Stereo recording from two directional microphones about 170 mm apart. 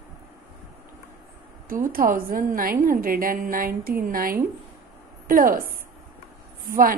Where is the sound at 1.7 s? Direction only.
55° right (ahead or behind).